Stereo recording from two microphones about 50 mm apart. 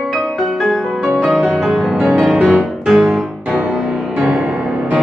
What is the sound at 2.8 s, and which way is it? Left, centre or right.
Music, centre.